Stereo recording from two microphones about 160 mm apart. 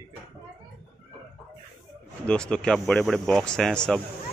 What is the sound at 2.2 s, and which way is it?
Speech, 5° left (ahead or behind).